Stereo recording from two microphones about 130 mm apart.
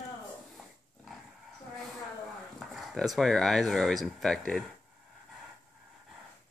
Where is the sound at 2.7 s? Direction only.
Centre (ahead or behind).